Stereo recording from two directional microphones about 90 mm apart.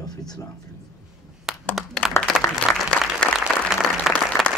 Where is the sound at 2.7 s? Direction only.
10° left (ahead or behind).